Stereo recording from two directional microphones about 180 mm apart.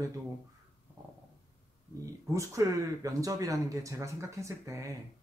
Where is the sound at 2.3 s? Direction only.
20° right (ahead or behind).